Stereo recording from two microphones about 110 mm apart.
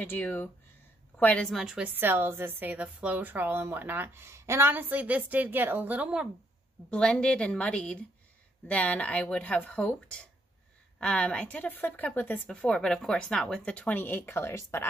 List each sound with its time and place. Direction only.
0.0 s a woman's voice: 15° left (ahead or behind)
1.6 s a woman's voice: 5° right (ahead or behind)
1.9 s a woman's voice: 20° right (ahead or behind)
6.9 s a woman's voice: 10° left (ahead or behind); by 14.9 s 25° left (ahead or behind)